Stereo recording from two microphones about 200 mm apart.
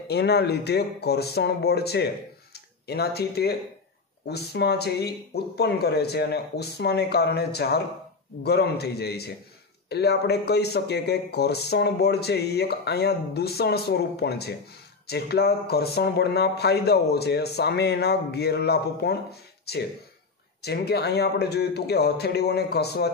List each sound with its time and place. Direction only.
0.1 s a man's voice: 55° left (ahead or behind)